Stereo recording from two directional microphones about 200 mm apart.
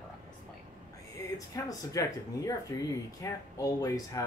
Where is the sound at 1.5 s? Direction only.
15° left (ahead or behind).